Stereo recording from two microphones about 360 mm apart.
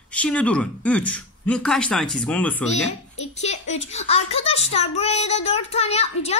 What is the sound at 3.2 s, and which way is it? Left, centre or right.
A child's voice, centre.